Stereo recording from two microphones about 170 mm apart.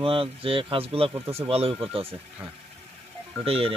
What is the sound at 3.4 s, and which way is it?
Speech, 35° right (ahead or behind).